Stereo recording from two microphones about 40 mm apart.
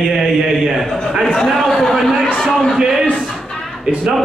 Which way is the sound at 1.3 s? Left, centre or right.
Centre.